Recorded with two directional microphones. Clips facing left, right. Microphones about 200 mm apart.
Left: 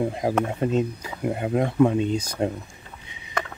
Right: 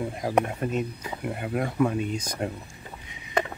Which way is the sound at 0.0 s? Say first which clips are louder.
Left 2 dB; 25° left (ahead or behind).